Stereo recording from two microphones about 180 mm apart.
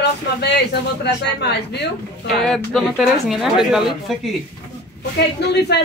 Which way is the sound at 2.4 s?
Centre (ahead or behind).